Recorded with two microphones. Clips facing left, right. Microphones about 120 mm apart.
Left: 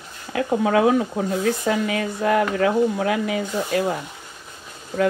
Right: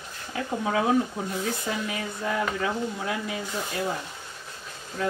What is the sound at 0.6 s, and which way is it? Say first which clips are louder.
Speech: left 5 dB; 90° left.